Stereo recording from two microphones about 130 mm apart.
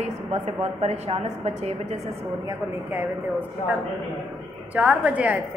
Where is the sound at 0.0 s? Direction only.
55° right (ahead or behind).